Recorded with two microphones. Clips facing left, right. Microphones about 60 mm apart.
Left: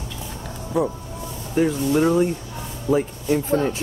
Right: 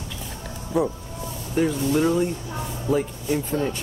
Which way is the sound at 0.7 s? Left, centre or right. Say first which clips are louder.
Left 1 dB; centre.